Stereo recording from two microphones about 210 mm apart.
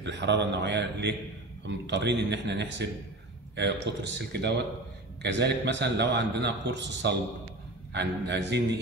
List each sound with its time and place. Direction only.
0.0 s a man's voice: 55° right (ahead or behind)